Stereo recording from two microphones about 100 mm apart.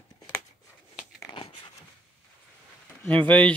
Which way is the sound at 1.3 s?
60° left (ahead or behind).